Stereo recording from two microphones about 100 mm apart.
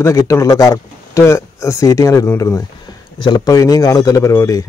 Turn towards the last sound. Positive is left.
turn(degrees=35)  # may be behind; listen again after turning